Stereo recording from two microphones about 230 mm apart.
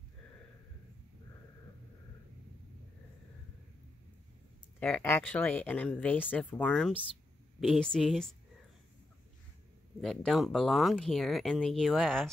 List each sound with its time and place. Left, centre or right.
4.7 s speech: centre
10.0 s speech: centre